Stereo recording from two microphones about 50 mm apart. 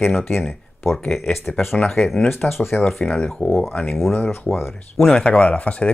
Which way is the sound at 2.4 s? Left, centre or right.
Centre.